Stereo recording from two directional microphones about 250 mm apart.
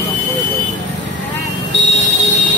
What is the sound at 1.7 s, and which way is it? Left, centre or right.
Speech, right.